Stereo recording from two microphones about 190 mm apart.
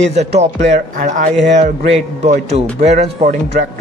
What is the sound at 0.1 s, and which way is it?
Speech, 35° right (ahead or behind).